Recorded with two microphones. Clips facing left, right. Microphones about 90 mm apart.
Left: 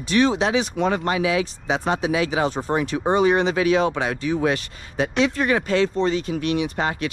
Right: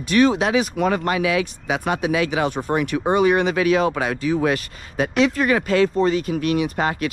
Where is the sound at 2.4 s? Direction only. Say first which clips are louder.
Right 1 dB; 55° right (ahead or behind).